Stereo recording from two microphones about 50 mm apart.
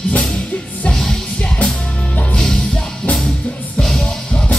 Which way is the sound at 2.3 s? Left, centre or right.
Centre.